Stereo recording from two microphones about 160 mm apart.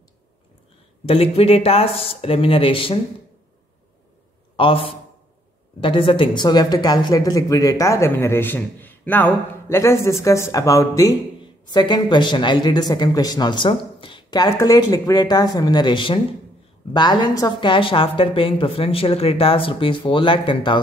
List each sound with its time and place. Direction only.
1.0 s a woman's voice: 35° left (ahead or behind)
4.6 s a woman's voice: 35° left (ahead or behind)